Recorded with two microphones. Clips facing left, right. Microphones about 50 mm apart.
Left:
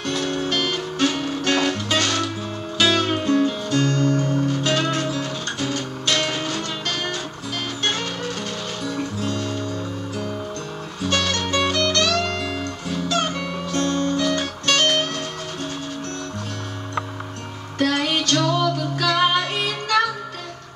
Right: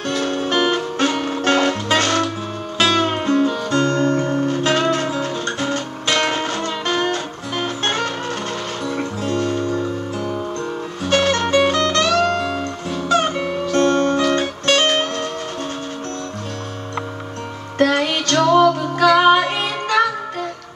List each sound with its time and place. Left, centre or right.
0.0 s music: right
11.1 s music: right
13.7 s music: right
17.7 s music: right